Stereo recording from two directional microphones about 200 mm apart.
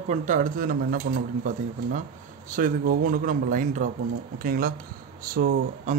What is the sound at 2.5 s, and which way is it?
Speech, 45° right (ahead or behind).